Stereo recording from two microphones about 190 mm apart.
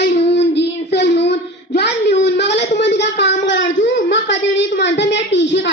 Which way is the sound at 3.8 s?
70° left (ahead or behind).